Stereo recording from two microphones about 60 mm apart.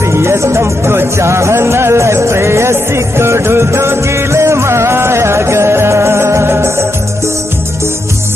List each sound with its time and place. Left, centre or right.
0.0 s music: right